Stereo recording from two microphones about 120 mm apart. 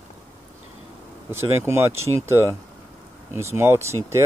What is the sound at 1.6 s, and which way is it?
Speech, 20° right (ahead or behind).